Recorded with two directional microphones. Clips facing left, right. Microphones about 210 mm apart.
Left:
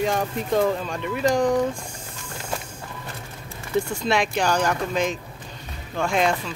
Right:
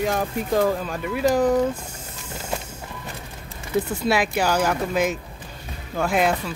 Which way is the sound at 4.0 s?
5° right (ahead or behind).